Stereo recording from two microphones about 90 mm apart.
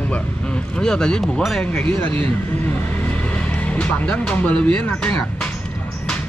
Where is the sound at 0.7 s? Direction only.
10° left (ahead or behind).